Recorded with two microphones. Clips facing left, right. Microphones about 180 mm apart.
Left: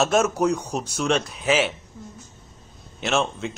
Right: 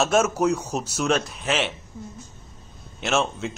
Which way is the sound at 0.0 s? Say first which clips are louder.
Even; centre (ahead or behind).